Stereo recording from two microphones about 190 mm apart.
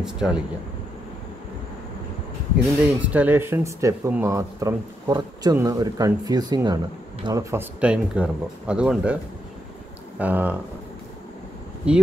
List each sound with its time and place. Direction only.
0.0 s speech: 5° right (ahead or behind)
2.8 s speech: 10° right (ahead or behind)
7.8 s speech: 5° right (ahead or behind)
11.9 s speech: 5° right (ahead or behind)